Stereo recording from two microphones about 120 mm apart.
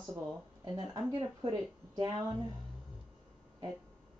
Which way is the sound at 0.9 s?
40° right (ahead or behind).